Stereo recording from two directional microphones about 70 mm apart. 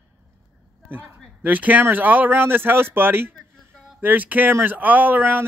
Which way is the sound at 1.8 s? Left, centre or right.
Right.